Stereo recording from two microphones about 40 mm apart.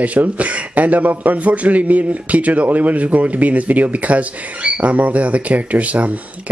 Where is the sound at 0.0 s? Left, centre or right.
Right.